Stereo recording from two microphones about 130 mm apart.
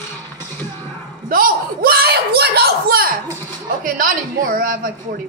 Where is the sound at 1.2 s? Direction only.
90° right.